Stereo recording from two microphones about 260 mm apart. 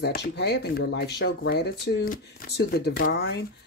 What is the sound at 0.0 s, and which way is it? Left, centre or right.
Speech, left.